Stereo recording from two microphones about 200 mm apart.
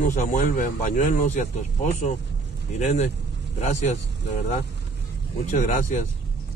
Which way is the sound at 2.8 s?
35° left (ahead or behind).